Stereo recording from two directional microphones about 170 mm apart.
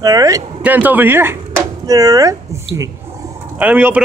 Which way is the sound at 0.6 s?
10° right (ahead or behind).